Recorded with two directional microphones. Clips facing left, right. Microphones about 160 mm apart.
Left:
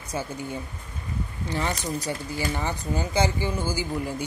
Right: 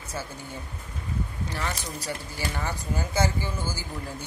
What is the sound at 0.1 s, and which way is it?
Speech, 15° left (ahead or behind).